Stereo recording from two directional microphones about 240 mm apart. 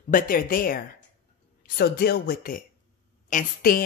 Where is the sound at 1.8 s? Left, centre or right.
Left.